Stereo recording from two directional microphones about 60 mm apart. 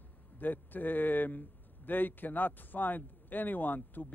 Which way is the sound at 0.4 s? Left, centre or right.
Left.